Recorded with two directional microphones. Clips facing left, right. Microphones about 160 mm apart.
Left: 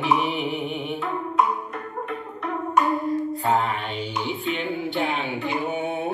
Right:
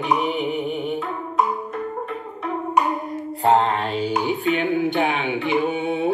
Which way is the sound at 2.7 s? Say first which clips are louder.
Left 2 dB; 20° right (ahead or behind).